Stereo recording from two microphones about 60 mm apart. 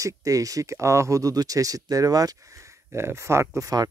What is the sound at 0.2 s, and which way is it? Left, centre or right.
Speech, right.